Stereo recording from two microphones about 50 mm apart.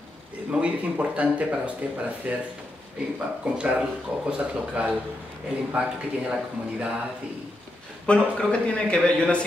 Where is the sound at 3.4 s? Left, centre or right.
Centre.